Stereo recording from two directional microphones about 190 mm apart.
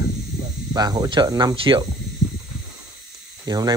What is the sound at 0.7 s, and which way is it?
Speech, 20° right (ahead or behind).